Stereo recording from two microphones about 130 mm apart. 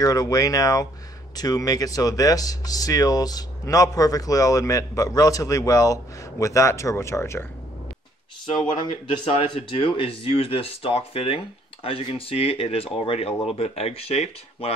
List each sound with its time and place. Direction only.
0.0 s speech: 30° left (ahead or behind)
9.4 s speech: 45° left (ahead or behind)